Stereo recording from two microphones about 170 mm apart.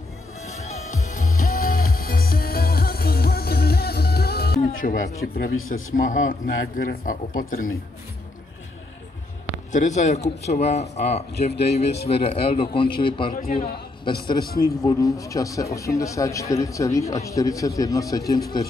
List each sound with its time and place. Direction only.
0.5 s music: 45° left (ahead or behind); by 4.6 s 65° left (ahead or behind)
4.7 s speech: 55° left (ahead or behind)
9.7 s speech: 45° left (ahead or behind)
13.3 s a man's voice: 55° left (ahead or behind)
14.8 s a man's voice: 20° left (ahead or behind)